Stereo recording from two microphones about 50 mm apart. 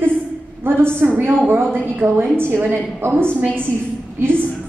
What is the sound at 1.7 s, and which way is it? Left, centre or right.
Speech, right.